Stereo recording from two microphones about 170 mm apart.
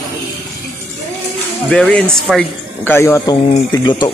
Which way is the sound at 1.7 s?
5° left (ahead or behind).